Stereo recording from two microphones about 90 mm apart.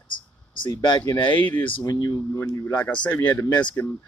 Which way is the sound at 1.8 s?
50° left (ahead or behind).